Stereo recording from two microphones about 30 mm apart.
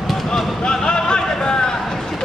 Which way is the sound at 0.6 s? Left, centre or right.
Left.